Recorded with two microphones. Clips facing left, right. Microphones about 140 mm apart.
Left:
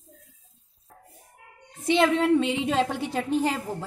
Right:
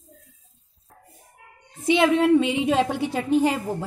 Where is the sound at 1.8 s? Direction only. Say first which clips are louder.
Right 3 dB; 10° right (ahead or behind).